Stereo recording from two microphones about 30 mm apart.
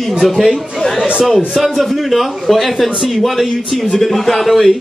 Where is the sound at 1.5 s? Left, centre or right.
Centre.